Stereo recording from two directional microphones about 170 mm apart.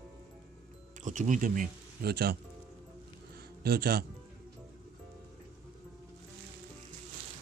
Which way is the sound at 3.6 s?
70° right (ahead or behind).